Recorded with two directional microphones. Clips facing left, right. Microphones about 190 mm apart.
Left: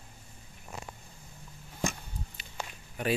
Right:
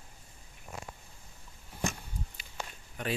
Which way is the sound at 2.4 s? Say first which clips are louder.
Left 2 dB; 10° right (ahead or behind).